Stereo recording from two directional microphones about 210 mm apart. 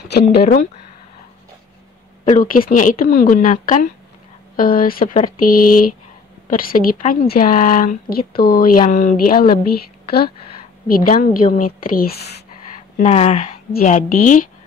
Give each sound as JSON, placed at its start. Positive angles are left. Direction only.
{"t": 0.1, "sound": "a woman's voice", "side_deg": 50}
{"t": 2.2, "sound": "a woman's voice", "side_deg": 40}
{"t": 11.4, "sound": "speech", "side_deg": 40}
{"t": 12.9, "sound": "speech", "side_deg": 30}
{"t": 13.7, "sound": "speech", "side_deg": 40}